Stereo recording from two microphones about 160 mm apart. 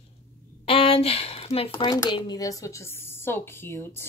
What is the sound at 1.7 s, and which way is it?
Speech, 25° left (ahead or behind).